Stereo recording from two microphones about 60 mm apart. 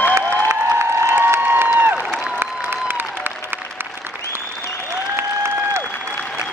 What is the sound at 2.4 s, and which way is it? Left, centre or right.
Applause, right.